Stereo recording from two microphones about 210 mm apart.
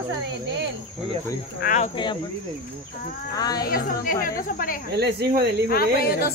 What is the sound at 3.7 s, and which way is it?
Speech, 45° left (ahead or behind).